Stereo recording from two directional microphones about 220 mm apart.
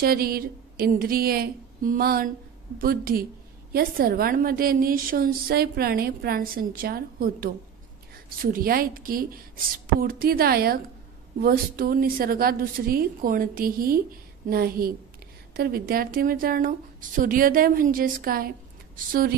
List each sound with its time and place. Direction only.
0.0 s a woman's voice: 45° right (ahead or behind)